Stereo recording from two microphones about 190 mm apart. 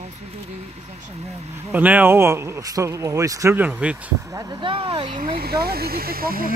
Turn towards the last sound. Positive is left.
turn(degrees=-50)  # may be behind; listen again after turning